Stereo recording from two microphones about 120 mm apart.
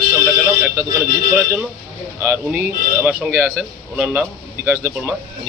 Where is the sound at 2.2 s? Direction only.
15° right (ahead or behind).